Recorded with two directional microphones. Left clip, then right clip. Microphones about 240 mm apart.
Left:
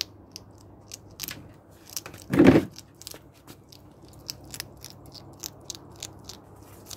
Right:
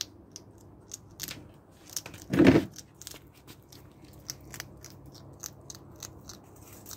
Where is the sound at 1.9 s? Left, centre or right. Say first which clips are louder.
Left 4 dB; centre.